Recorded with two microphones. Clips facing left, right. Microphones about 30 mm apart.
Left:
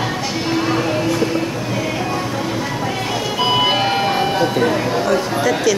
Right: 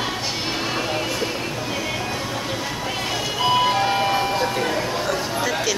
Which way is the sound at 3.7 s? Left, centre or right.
Left.